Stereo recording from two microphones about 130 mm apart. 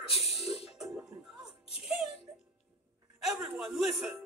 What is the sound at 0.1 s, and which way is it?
Speech, 50° left (ahead or behind).